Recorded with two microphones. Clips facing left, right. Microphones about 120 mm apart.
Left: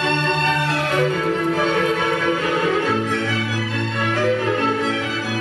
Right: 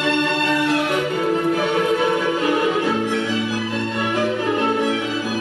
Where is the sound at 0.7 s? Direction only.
15° right (ahead or behind).